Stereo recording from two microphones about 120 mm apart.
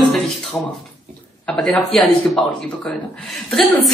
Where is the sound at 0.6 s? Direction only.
15° left (ahead or behind).